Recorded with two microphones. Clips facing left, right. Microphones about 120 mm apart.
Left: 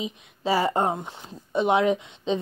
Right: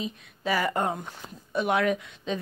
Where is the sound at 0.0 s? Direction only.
25° left (ahead or behind).